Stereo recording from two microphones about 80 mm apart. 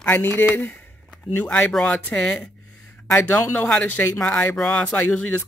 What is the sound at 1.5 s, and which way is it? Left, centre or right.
Speech, centre.